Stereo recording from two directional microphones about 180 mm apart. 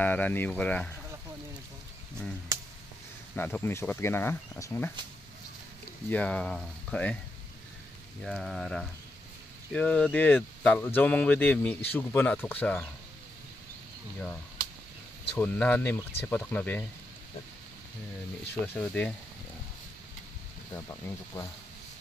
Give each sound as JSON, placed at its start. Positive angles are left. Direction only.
{"t": 0.0, "sound": "speech", "side_deg": 10}
{"t": 3.3, "sound": "speech", "side_deg": 10}
{"t": 6.0, "sound": "speech", "side_deg": 5}
{"t": 8.2, "sound": "speech", "side_deg": 0}
{"t": 15.3, "sound": "speech", "side_deg": 10}
{"t": 18.5, "sound": "speech", "side_deg": 10}
{"t": 20.7, "sound": "speech", "side_deg": 15}